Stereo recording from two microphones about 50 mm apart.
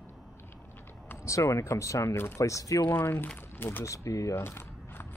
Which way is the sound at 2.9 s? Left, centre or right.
Left.